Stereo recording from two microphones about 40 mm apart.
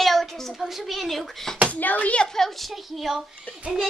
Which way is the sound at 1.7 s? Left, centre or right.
Left.